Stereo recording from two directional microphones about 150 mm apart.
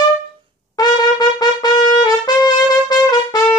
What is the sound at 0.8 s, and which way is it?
Trumpet, 25° left (ahead or behind).